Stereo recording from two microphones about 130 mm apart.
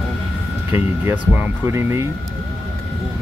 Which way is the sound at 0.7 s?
20° right (ahead or behind).